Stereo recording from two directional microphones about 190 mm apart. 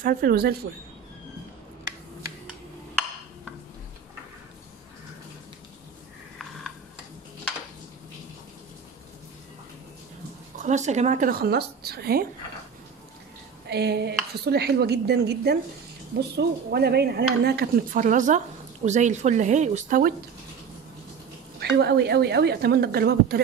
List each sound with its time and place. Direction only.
0.0 s speech: 50° right (ahead or behind)
10.6 s speech: 40° right (ahead or behind); by 12.3 s 55° right (ahead or behind)
13.7 s speech: 60° right (ahead or behind)
21.7 s speech: 60° right (ahead or behind)